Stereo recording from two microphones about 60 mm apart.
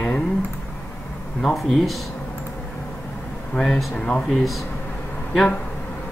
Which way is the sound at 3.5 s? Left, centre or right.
Centre.